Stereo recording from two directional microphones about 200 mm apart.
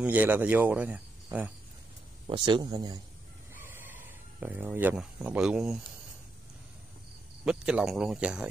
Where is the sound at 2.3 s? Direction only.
20° right (ahead or behind).